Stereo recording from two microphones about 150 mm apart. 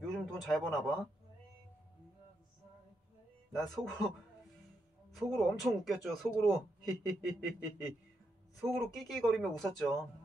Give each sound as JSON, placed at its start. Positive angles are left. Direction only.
{"t": 0.0, "sound": "speech", "side_deg": 0}
{"t": 3.8, "sound": "a man's voice", "side_deg": 0}
{"t": 5.1, "sound": "a man's voice", "side_deg": 0}